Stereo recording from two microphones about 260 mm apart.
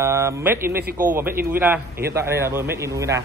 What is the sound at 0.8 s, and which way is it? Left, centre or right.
Speech, right.